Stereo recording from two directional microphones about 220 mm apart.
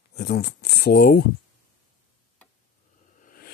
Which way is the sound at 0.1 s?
45° left (ahead or behind).